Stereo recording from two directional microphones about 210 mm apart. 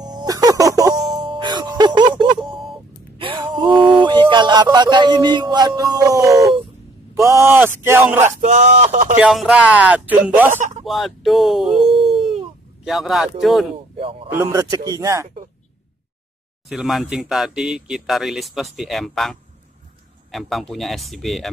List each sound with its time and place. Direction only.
0.0 s a sound: 20° right (ahead or behind)
1.3 s music: 20° right (ahead or behind)
2.5 s a sound: centre (ahead or behind)
3.2 s a sound: 25° right (ahead or behind)
4.6 s speech: 20° right (ahead or behind)
8.4 s speech: 35° right (ahead or behind)
9.2 s speech: centre (ahead or behind)
13.9 s a man's voice: 25° right (ahead or behind)
14.3 s speech: 15° right (ahead or behind)
16.6 s speech: centre (ahead or behind)